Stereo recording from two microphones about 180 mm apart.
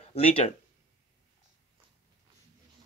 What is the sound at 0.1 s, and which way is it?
Speech, 35° left (ahead or behind).